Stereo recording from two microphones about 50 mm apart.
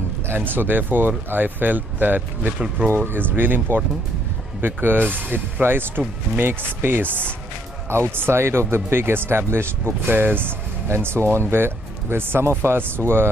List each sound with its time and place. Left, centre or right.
0.3 s speech: right
10.9 s speech: right